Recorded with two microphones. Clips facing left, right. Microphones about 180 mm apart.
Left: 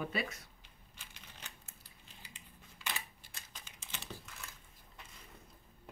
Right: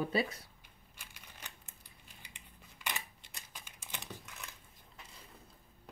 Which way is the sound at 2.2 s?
15° right (ahead or behind).